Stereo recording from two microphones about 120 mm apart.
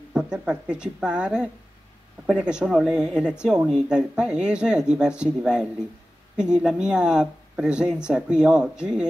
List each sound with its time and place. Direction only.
0.1 s speech: 5° right (ahead or behind)